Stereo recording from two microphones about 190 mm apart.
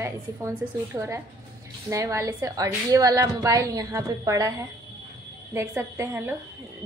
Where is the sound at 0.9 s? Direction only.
15° right (ahead or behind).